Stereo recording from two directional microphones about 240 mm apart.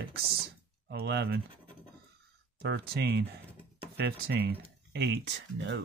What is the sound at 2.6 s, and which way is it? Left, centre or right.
Speech, right.